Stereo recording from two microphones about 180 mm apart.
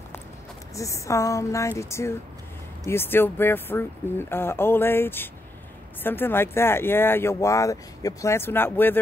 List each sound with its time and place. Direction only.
0.7 s speech: 15° left (ahead or behind)